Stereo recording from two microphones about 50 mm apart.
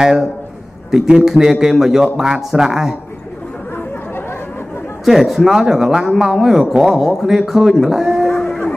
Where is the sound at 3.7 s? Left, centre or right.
Left.